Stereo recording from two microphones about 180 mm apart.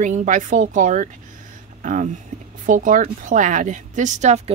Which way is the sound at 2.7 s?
50° right (ahead or behind).